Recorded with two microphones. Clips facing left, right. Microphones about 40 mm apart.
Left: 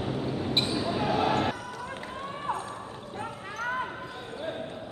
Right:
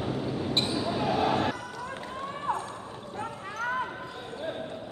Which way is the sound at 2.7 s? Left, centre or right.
Centre.